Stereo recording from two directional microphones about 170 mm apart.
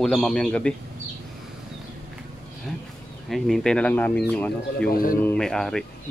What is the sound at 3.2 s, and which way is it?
Speech, centre (ahead or behind).